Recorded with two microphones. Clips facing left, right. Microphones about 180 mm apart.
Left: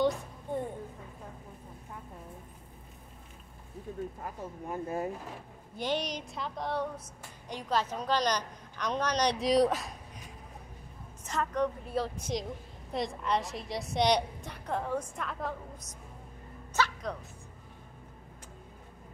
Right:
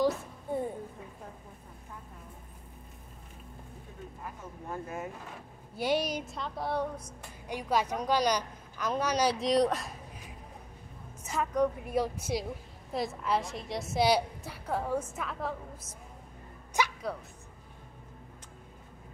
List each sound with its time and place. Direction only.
0.0 s a sound: 10° right (ahead or behind)
4.8 s speech: 35° left (ahead or behind)
5.8 s a woman's voice: 10° right (ahead or behind)
11.2 s a woman's voice: 10° right (ahead or behind)
16.7 s music: 10° right (ahead or behind)